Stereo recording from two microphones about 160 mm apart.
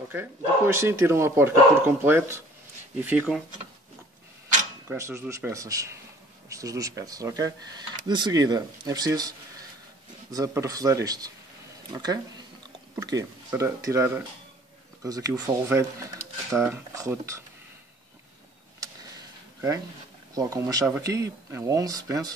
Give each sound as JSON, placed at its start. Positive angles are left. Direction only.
{"t": 0.1, "sound": "speech", "side_deg": -15}
{"t": 4.8, "sound": "speech", "side_deg": -15}
{"t": 20.3, "sound": "speech", "side_deg": -20}